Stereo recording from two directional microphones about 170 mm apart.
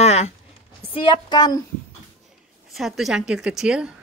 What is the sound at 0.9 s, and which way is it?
Speech, 30° left (ahead or behind).